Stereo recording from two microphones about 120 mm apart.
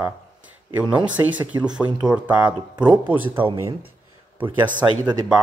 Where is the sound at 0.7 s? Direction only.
15° right (ahead or behind).